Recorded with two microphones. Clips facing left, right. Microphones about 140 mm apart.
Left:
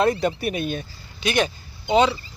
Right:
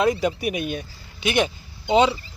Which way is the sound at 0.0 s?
10° right (ahead or behind).